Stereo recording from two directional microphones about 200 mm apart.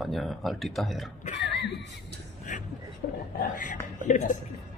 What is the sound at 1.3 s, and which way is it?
Speech, 60° left (ahead or behind).